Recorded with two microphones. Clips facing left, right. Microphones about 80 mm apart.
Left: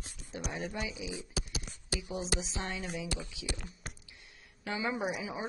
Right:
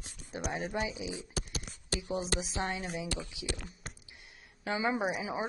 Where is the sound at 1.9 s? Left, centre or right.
Right.